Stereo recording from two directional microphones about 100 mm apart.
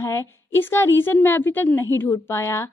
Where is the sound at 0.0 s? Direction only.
30° left (ahead or behind).